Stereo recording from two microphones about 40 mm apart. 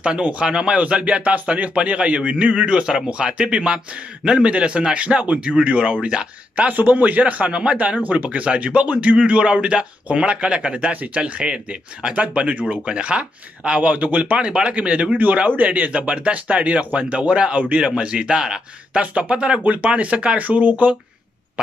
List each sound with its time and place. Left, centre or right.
0.2 s a man's voice: right
6.7 s a man's voice: right
10.9 s speech: right
12.8 s speech: right
14.4 s a man's voice: right
15.5 s speech: right
17.6 s speech: right
17.8 s a man's voice: right
18.9 s speech: right